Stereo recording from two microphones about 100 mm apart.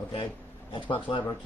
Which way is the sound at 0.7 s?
60° left (ahead or behind).